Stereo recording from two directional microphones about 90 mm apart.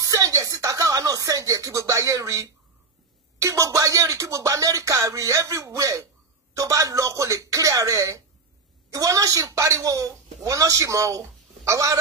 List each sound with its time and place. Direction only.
0.0 s a woman's voice: 40° right (ahead or behind)